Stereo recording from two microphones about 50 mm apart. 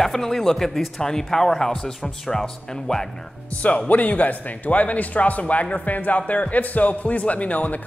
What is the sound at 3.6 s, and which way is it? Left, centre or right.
Speech, left.